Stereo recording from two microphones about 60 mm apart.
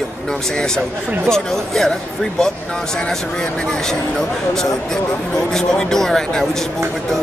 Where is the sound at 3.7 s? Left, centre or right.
Centre.